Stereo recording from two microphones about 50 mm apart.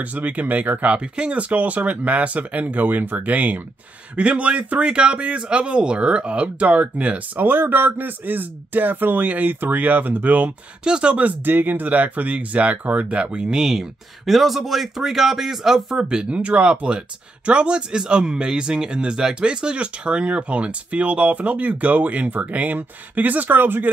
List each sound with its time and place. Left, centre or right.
0.0 s a man's voice: right
0.8 s a man's voice: right
7.4 s a man's voice: right
10.8 s speech: centre
11.1 s speech: right